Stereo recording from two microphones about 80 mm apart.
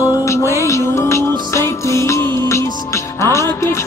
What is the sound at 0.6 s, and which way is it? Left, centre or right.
Music, left.